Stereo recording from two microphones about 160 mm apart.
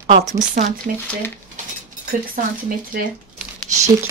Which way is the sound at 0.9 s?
60° right (ahead or behind).